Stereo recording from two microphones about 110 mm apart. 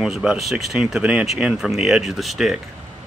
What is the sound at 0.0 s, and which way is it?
Speech, 5° right (ahead or behind).